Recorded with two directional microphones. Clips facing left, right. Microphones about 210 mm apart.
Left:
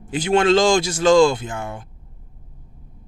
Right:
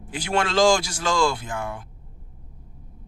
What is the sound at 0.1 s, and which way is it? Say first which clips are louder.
Speech: left 8 dB; 20° left (ahead or behind).